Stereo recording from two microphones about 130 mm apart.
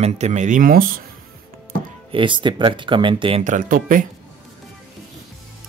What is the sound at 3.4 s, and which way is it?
Speech, 85° right.